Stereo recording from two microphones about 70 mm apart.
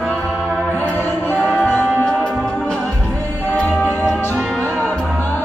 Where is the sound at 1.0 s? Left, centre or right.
Left.